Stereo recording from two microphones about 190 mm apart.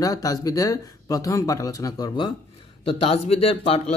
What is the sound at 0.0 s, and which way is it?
Speech, 20° left (ahead or behind).